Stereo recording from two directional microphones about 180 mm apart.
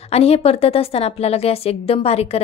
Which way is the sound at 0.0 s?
35° left (ahead or behind).